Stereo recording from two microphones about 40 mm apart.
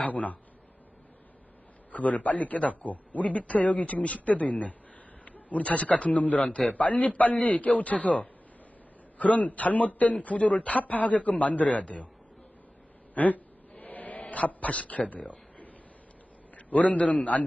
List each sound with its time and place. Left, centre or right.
0.0 s a man's voice: left
1.9 s a man's voice: left
13.1 s a sound: left
14.2 s a man's voice: left